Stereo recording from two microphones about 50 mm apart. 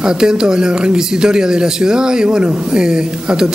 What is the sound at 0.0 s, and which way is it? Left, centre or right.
Speech, centre.